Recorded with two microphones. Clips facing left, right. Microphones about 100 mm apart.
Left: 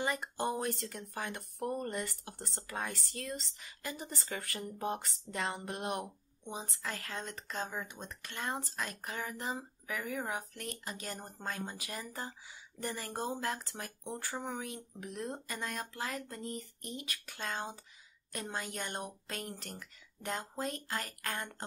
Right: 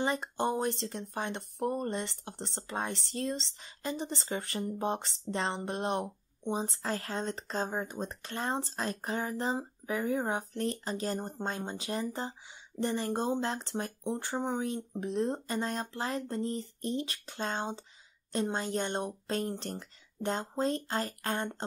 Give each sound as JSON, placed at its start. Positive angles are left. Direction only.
{"t": 0.0, "sound": "speech", "side_deg": -25}